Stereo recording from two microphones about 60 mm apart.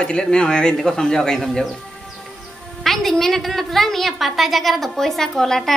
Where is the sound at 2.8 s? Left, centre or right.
Centre.